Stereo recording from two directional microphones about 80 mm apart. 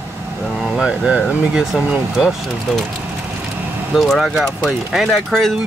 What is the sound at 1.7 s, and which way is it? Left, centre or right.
Speech, centre.